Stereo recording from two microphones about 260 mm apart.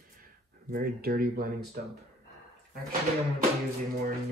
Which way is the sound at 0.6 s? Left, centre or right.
Right.